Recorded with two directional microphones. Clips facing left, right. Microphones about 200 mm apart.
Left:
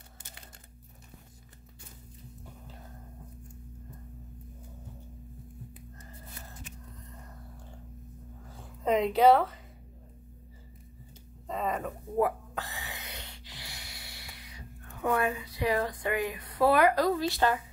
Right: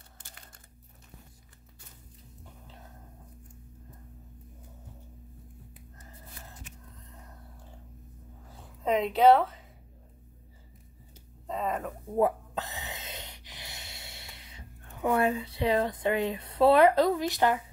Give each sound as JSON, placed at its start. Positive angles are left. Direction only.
{"t": 8.8, "sound": "speech", "side_deg": 0}
{"t": 11.4, "sound": "a sound", "side_deg": 0}
{"t": 12.2, "sound": "gasp", "side_deg": -20}